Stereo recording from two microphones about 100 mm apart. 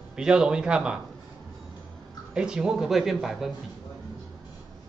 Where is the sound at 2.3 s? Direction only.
10° right (ahead or behind).